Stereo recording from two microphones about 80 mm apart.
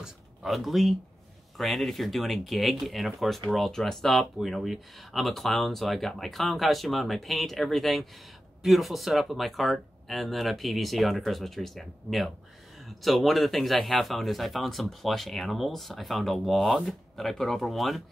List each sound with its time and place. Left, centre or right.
0.0 s speech: centre